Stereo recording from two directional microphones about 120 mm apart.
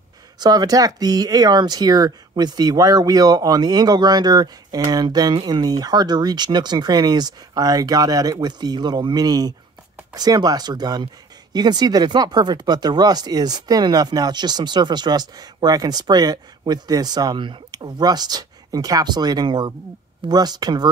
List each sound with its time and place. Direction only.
0.4 s speech: 35° right (ahead or behind)